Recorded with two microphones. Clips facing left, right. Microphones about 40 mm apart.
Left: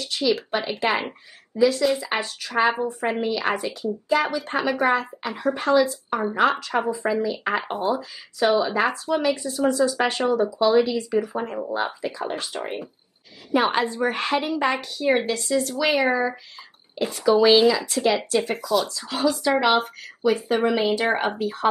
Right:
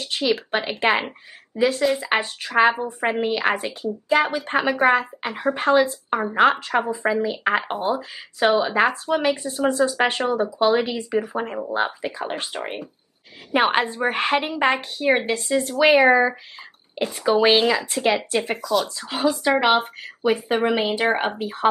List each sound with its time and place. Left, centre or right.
0.0 s a woman's voice: right
7.7 s speech: centre
8.5 s a woman's voice: right
13.5 s a woman's voice: right
18.6 s speech: centre
18.9 s a woman's voice: right